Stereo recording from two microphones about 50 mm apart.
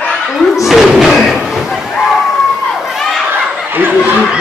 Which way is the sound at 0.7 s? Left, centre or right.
Centre.